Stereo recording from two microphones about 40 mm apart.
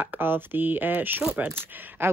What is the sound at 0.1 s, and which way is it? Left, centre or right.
Speech, right.